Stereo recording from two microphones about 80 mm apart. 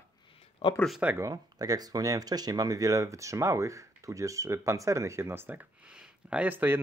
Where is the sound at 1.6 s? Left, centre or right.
Right.